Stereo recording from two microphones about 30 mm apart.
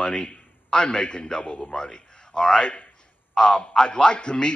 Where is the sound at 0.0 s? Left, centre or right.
Left.